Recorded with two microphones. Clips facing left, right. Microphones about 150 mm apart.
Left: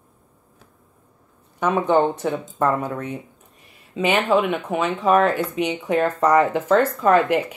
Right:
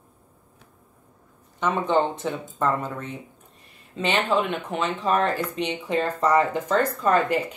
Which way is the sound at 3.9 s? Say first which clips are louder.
Left 4 dB; 5° left (ahead or behind).